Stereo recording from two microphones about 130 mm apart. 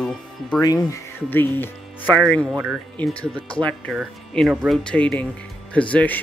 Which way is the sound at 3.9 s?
5° right (ahead or behind).